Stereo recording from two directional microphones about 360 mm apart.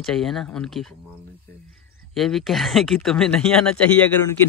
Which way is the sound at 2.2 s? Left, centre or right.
Centre.